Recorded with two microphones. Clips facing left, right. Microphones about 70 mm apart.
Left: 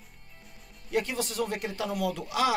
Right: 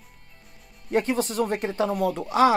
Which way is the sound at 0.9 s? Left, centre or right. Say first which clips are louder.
Right 6 dB; right.